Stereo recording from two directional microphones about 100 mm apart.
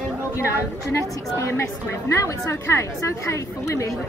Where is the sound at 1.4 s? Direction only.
30° left (ahead or behind).